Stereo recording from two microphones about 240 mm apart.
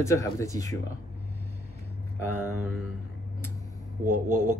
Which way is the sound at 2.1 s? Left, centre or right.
Right.